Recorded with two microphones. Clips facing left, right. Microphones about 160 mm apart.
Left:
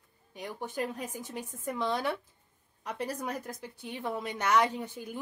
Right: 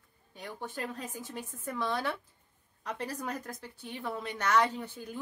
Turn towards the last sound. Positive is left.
turn(degrees=15)  # may be behind; listen again after turning